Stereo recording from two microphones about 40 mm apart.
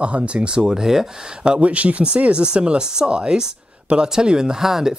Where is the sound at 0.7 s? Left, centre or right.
Centre.